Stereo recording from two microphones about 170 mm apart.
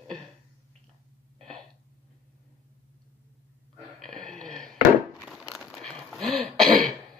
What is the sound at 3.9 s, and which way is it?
Crumpling, 5° left (ahead or behind).